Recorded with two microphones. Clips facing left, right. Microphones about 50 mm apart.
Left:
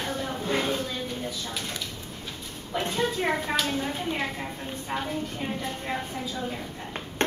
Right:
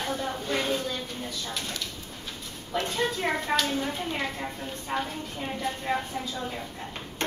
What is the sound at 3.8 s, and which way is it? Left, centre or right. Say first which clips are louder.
A woman's voice: left 1 dB; centre.